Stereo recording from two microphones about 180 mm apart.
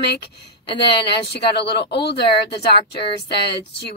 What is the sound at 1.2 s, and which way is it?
Speech, 70° left (ahead or behind).